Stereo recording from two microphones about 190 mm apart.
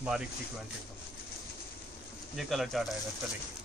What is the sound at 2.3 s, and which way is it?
Speech, centre (ahead or behind).